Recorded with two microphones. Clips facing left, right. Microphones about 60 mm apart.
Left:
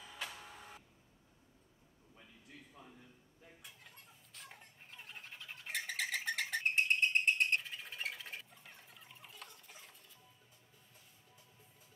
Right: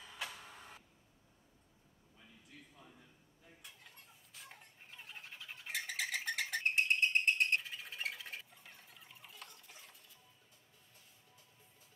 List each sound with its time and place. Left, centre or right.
0.0 s printer: centre
2.8 s a sound: left
3.6 s fowl: centre